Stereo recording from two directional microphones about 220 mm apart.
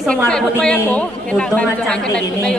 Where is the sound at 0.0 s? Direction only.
5° left (ahead or behind).